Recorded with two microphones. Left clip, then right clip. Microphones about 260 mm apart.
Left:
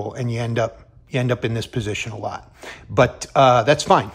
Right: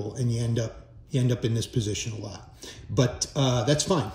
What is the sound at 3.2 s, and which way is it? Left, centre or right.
Speech, centre.